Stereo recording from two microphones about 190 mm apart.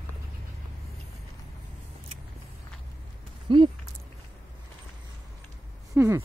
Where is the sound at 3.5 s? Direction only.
25° right (ahead or behind).